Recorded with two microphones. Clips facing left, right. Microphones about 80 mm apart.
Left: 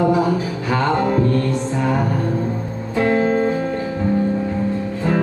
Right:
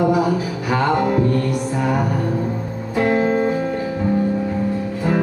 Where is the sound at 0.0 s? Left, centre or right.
Centre.